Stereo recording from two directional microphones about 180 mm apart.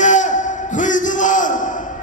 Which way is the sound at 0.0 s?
45° left (ahead or behind).